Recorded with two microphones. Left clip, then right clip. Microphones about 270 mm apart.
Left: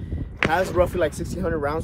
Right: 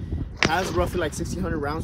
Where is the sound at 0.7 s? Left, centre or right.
Centre.